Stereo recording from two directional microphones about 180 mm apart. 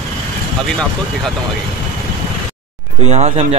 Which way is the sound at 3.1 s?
35° right (ahead or behind).